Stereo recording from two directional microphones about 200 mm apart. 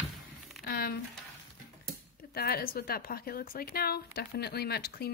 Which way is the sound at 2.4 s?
50° left (ahead or behind).